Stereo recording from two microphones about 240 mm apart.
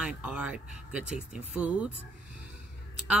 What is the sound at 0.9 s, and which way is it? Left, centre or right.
Speech, left.